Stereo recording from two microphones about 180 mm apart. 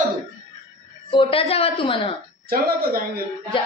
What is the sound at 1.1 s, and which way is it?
Child singing, 30° left (ahead or behind).